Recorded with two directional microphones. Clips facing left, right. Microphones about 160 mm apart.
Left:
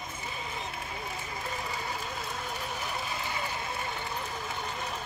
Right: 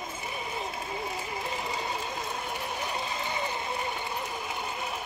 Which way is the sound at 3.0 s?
20° right (ahead or behind).